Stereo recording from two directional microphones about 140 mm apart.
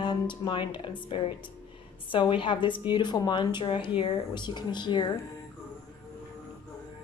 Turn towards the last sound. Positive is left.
turn(degrees=30)  # may be behind; listen again after turning